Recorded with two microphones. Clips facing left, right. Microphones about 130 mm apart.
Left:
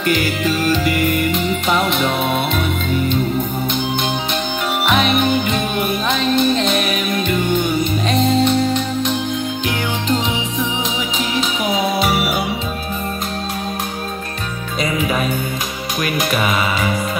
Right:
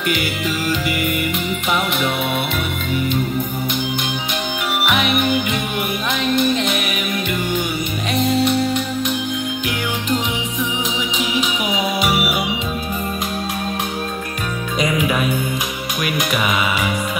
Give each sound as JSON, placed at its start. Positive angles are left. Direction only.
{"t": 0.0, "sound": "music", "side_deg": -15}
{"t": 1.3, "sound": "music", "side_deg": 30}
{"t": 4.7, "sound": "music", "side_deg": 30}
{"t": 7.2, "sound": "music", "side_deg": -10}
{"t": 11.7, "sound": "music", "side_deg": 35}
{"t": 14.9, "sound": "music", "side_deg": 30}